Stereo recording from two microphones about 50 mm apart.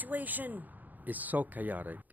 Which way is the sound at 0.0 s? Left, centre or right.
Right.